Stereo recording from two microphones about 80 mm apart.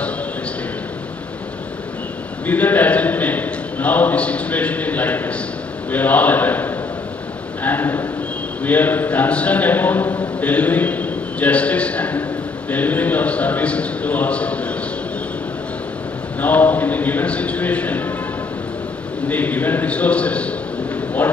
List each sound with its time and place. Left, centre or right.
2.4 s a man's voice: left
16.3 s a man's voice: left
19.2 s a man's voice: left